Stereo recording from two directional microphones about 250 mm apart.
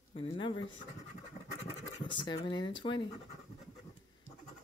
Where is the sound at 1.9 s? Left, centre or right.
Centre.